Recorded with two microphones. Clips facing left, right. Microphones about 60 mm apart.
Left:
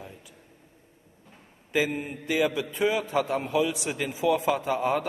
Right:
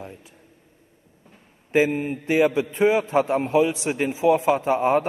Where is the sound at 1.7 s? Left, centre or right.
Right.